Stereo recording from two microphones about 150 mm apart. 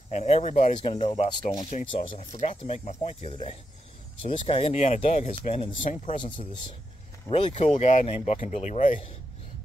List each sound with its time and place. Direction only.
0.1 s speech: 45° left (ahead or behind)
1.6 s speech: 55° left (ahead or behind); by 6.6 s 35° left (ahead or behind)
7.2 s speech: 45° left (ahead or behind)